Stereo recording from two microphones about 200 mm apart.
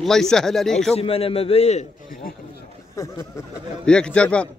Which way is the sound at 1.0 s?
30° left (ahead or behind).